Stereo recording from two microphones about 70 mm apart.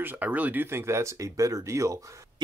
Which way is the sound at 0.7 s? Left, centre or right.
Right.